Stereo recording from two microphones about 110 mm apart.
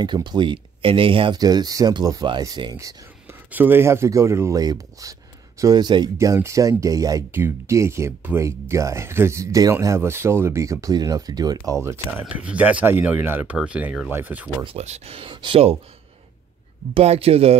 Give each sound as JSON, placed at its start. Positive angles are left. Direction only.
{"t": 0.0, "sound": "speech", "side_deg": -45}
{"t": 1.4, "sound": "speech", "side_deg": -35}
{"t": 3.3, "sound": "speech", "side_deg": -20}
{"t": 6.1, "sound": "speech", "side_deg": -25}
{"t": 12.1, "sound": "speech", "side_deg": -15}
{"t": 14.8, "sound": "speech", "side_deg": -70}
{"t": 16.9, "sound": "speech", "side_deg": -65}